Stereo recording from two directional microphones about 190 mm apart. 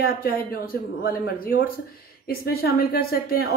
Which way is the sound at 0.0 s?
50° left (ahead or behind).